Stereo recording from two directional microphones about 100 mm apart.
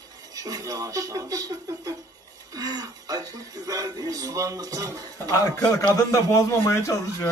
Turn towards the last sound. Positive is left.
turn(degrees=30)  # may be behind; listen again after turning